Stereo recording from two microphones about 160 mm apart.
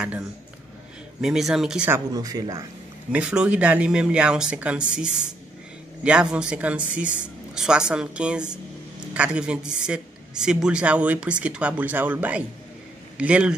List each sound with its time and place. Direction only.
1.2 s speech: 5° right (ahead or behind)
2.1 s speech: 25° right (ahead or behind)
3.1 s a woman's voice: 10° right (ahead or behind)